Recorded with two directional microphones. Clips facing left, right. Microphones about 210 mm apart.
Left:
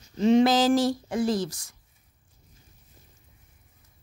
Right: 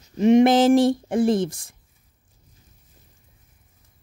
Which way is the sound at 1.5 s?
55° right (ahead or behind).